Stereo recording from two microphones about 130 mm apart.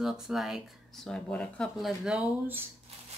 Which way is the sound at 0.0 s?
Centre (ahead or behind).